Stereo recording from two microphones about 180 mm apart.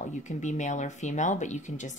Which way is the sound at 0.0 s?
40° left (ahead or behind).